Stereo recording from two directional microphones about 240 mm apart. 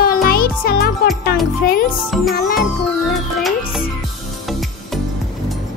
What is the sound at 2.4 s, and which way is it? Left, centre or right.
Music, left.